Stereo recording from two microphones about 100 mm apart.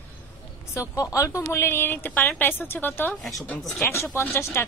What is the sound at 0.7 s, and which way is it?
Speech, 30° left (ahead or behind).